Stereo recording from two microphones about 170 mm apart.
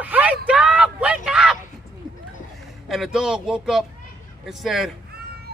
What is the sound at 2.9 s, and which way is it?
A man's voice, centre (ahead or behind).